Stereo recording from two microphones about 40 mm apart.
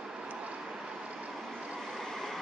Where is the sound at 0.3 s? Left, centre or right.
Right.